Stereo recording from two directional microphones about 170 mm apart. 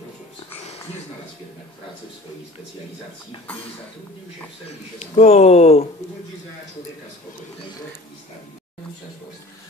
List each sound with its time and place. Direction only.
3.4 s speech: 10° left (ahead or behind)
4.6 s speech: 40° left (ahead or behind)